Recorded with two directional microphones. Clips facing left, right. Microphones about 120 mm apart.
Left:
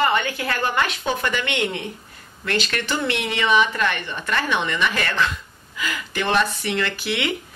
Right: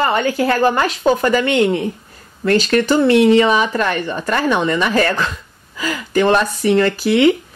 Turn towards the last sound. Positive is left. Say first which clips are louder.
# right 12 dB
turn(degrees=-35)  # may be behind; listen again after turning